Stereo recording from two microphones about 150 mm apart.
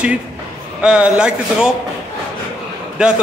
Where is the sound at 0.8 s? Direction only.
5° right (ahead or behind).